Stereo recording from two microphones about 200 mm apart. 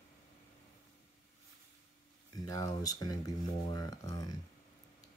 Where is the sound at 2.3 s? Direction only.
15° left (ahead or behind).